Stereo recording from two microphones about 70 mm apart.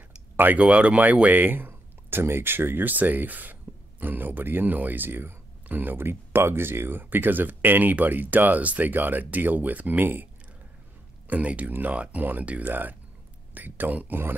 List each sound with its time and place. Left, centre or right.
0.4 s speech: right
0.7 s speech: centre
11.2 s speech: centre